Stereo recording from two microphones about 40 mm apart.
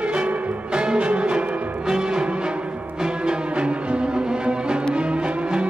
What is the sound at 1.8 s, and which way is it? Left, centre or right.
Music, centre.